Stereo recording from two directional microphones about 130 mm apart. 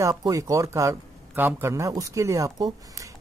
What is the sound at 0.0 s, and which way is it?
A man's voice, 30° right (ahead or behind).